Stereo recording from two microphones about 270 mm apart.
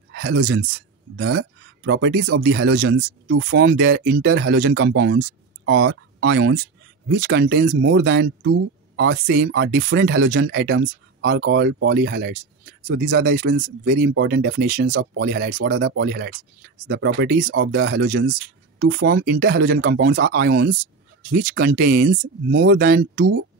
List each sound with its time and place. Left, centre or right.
0.1 s speech: right